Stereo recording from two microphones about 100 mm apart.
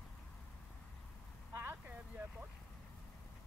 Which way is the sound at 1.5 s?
25° right (ahead or behind).